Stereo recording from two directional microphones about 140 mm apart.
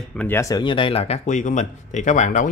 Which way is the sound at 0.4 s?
25° left (ahead or behind).